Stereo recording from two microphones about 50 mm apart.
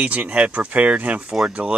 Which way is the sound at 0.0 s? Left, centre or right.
Right.